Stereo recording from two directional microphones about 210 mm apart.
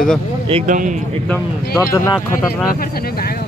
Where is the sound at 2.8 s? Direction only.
45° left (ahead or behind).